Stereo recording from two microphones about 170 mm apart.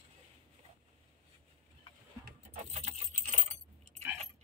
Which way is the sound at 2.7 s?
40° right (ahead or behind).